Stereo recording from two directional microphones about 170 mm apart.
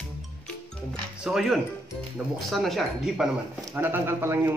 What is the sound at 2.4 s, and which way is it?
Speech, centre (ahead or behind).